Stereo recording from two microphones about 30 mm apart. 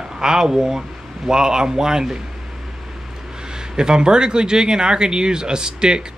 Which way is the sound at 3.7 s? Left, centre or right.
Right.